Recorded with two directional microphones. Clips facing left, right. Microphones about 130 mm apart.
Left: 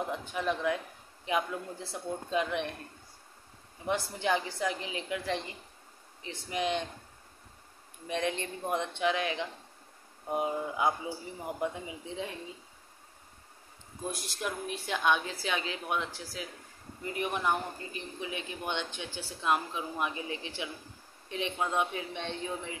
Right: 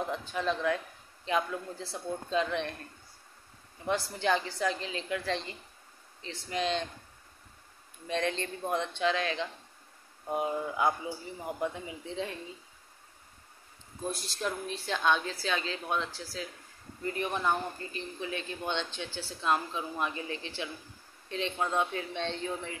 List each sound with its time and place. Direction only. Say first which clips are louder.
0.0 s speech: right 1 dB; 15° left (ahead or behind)
3.8 s a man's voice: right 1 dB; 20° left (ahead or behind)
8.1 s a man's voice: right 1 dB; 15° left (ahead or behind)
14.0 s a man's voice: right 2 dB; 15° left (ahead or behind)